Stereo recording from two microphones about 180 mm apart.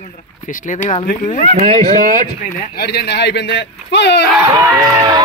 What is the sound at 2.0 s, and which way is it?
Speech, 45° right (ahead or behind).